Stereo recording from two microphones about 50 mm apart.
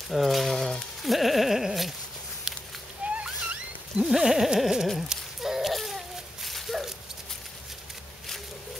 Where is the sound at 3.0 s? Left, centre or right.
Right.